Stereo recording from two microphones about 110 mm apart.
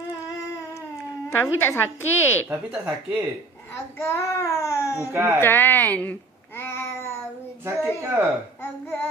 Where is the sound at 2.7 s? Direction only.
15° right (ahead or behind).